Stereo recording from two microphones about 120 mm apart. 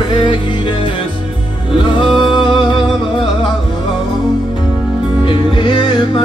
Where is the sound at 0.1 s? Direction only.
40° left (ahead or behind).